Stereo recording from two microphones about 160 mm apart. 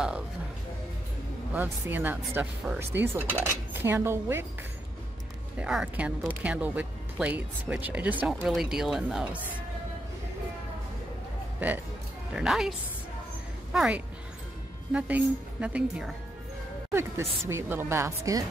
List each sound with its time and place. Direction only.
1.5 s speech: 10° right (ahead or behind)
5.6 s speech: 5° right (ahead or behind)
11.6 s speech: 10° right (ahead or behind)
13.7 s speech: 10° right (ahead or behind)